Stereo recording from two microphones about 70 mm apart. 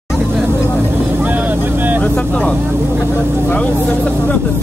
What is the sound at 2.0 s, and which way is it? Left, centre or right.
Vehicle, centre.